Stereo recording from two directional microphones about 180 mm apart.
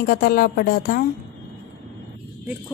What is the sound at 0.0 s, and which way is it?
A woman's voice, 55° left (ahead or behind).